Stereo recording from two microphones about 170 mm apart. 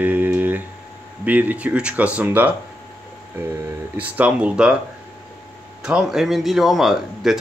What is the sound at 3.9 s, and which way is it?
Speech, 10° right (ahead or behind).